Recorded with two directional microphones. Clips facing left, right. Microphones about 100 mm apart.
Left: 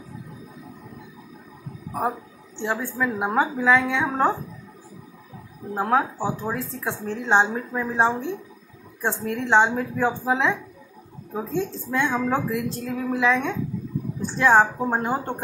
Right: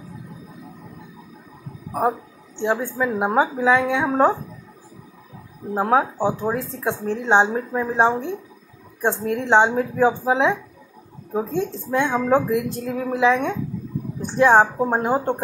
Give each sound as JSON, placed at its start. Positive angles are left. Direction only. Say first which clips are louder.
{"t": 2.0, "sound": "a woman's voice", "louder": "right 5 dB", "side_deg": -15}
{"t": 5.8, "sound": "a woman's voice", "louder": "right 3 dB", "side_deg": -15}